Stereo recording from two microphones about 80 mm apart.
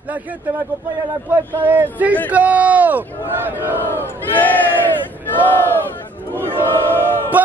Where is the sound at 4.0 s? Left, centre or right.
Left.